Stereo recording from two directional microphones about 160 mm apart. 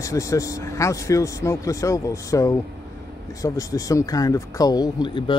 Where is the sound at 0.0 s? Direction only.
20° left (ahead or behind).